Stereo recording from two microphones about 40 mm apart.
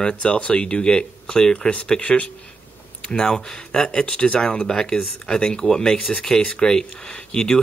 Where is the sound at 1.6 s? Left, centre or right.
Left.